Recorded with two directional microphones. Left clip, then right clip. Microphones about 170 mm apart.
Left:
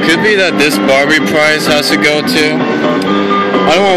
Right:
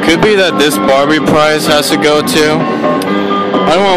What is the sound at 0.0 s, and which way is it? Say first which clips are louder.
Speech: right 1 dB; 25° right (ahead or behind).